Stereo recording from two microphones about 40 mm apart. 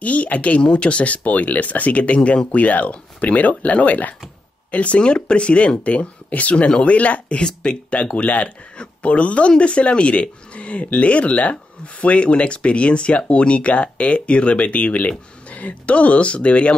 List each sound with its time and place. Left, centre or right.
0.0 s speech: left
0.6 s speech: left